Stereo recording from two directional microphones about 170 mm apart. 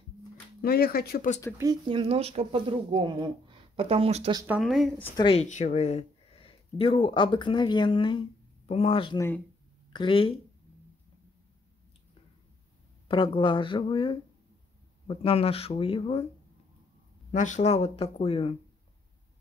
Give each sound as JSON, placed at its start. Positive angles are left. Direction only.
{"t": 0.6, "sound": "speech", "side_deg": 65}
{"t": 1.6, "sound": "speech", "side_deg": -25}
{"t": 4.5, "sound": "speech", "side_deg": 0}
{"t": 5.1, "sound": "speech", "side_deg": 30}
{"t": 13.1, "sound": "speech", "side_deg": 30}
{"t": 17.3, "sound": "speech", "side_deg": 45}